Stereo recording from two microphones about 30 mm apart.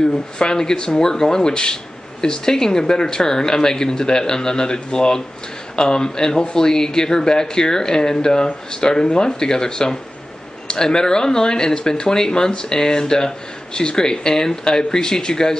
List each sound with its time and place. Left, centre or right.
0.0 s speech: left